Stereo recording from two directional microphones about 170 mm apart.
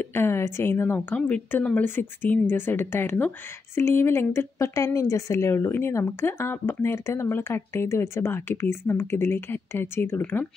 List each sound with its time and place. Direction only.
0.0 s speech: 15° left (ahead or behind)